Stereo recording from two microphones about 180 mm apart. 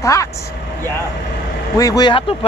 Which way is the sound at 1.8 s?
20° left (ahead or behind).